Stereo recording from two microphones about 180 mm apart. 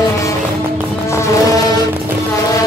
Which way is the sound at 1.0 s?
15° left (ahead or behind).